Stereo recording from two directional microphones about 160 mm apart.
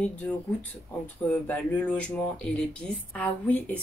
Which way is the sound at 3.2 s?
10° left (ahead or behind).